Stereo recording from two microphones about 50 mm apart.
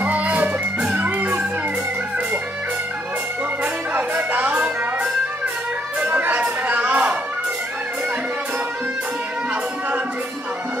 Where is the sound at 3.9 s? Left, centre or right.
Right.